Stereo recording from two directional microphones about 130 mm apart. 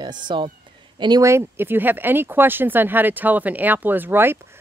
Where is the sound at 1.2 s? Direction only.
20° right (ahead or behind).